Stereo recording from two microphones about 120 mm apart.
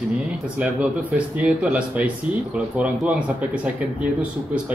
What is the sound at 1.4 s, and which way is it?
Speech, 10° right (ahead or behind).